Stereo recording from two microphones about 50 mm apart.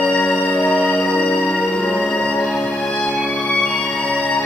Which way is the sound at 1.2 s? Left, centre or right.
Left.